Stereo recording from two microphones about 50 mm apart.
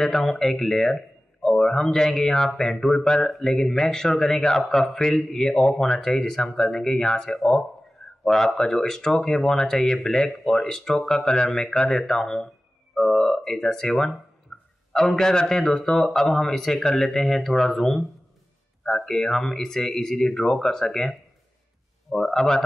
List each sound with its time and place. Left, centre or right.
0.0 s speech: centre
12.9 s a sound: centre
14.9 s speech: centre